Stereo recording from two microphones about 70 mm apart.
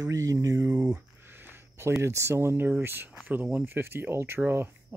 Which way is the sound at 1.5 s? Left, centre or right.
Right.